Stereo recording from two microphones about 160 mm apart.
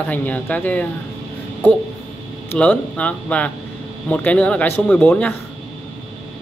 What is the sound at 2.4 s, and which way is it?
Speech, 10° left (ahead or behind).